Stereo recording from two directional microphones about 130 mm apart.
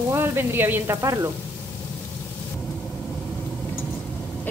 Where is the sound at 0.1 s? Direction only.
20° right (ahead or behind).